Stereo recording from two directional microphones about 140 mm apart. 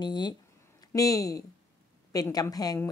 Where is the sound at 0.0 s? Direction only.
30° left (ahead or behind).